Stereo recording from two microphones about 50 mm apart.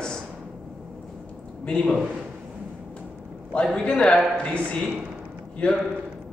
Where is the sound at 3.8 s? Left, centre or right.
Left.